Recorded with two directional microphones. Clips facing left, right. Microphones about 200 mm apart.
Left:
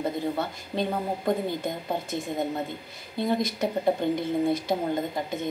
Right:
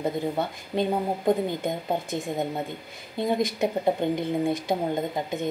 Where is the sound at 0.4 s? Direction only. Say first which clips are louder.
Right 2 dB; 15° right (ahead or behind).